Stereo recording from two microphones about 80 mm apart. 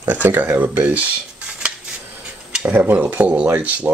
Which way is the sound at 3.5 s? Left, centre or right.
Centre.